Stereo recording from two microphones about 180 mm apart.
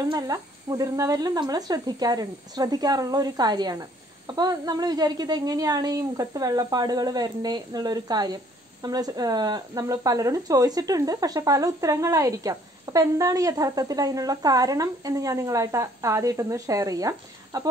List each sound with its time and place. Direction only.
0.1 s speech: 20° right (ahead or behind)